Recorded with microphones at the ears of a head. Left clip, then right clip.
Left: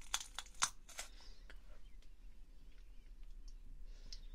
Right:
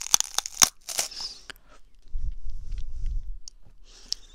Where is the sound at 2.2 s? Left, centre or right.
Right.